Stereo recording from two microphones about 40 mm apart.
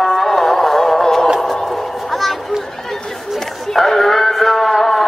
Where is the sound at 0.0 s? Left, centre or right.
Centre.